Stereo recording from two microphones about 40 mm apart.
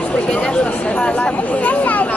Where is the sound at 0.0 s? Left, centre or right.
Left.